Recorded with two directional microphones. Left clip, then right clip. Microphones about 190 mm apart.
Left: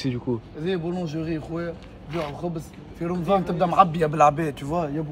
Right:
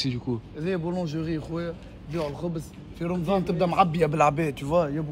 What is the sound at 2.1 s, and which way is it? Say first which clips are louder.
Speech: left 1 dB; 20° left (ahead or behind).